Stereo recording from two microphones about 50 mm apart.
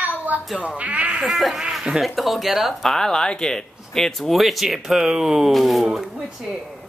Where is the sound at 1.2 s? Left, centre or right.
Centre.